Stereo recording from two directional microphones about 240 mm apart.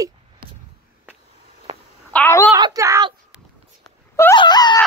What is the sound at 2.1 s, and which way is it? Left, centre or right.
Speech, centre.